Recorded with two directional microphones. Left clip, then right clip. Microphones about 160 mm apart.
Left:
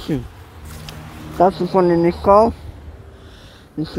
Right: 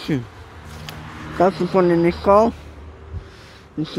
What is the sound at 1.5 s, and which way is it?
Speech, 15° right (ahead or behind).